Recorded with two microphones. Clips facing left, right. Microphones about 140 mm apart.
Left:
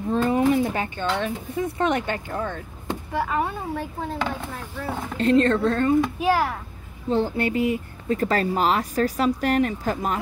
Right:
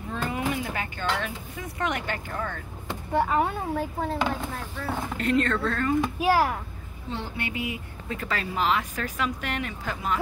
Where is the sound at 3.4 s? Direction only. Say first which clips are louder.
Right 1 dB; 10° right (ahead or behind).